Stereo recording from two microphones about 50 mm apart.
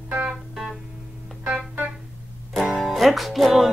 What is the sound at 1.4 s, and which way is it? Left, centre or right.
Music, right.